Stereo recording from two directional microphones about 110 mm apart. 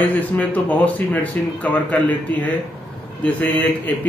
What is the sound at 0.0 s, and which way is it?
Speech, 15° left (ahead or behind).